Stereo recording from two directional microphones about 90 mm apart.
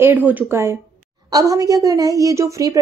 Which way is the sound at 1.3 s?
40° right (ahead or behind).